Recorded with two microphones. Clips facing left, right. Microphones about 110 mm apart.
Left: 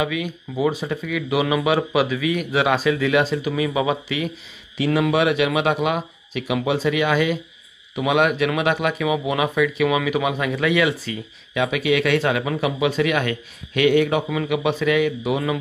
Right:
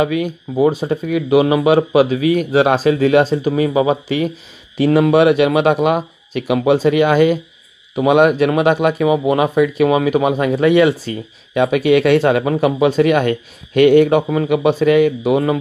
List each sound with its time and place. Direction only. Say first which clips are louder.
0.0 s speech: right 7 dB; 45° right (ahead or behind)